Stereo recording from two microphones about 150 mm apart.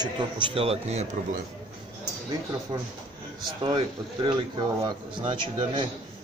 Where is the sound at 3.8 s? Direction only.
30° right (ahead or behind).